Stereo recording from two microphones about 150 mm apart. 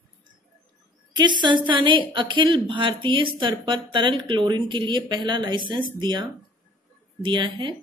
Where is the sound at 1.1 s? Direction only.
30° right (ahead or behind).